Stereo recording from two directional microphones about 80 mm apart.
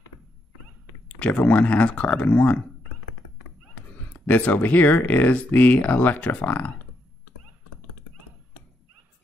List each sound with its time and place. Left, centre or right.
1.0 s speech: centre
4.1 s speech: centre